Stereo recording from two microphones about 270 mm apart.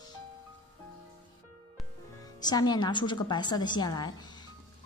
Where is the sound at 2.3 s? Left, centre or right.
Centre.